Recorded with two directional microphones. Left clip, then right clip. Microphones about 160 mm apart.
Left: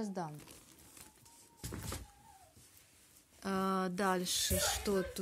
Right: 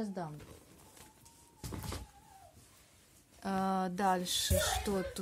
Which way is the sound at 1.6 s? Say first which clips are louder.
Right 1 dB; 40° left (ahead or behind).